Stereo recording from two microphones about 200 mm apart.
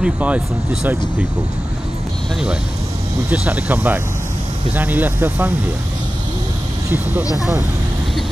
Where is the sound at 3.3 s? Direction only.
5° right (ahead or behind).